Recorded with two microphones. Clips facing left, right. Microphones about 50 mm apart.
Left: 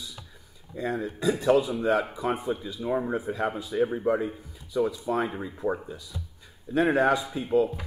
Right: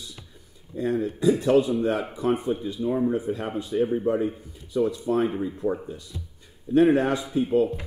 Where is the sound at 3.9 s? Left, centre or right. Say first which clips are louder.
Right 2 dB; centre.